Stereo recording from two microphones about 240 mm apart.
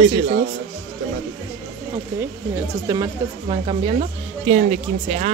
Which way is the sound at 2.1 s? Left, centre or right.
Centre.